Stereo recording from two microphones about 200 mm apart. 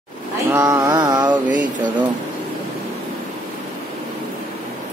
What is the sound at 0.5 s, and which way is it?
Mantra, 15° right (ahead or behind).